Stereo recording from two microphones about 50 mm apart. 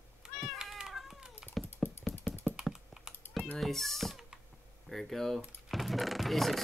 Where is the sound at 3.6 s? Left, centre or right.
Centre.